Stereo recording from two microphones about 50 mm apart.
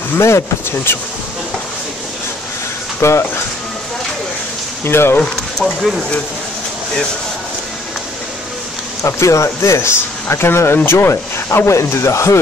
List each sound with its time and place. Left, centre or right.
0.2 s speech: left
3.0 s speech: left
4.8 s speech: left
9.0 s speech: left
10.3 s speech: left